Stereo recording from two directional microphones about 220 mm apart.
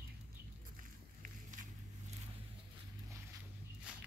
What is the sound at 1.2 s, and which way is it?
Walk, 35° right (ahead or behind).